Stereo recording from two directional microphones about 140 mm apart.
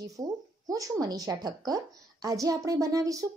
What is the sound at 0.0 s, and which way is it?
A woman's voice, 25° right (ahead or behind).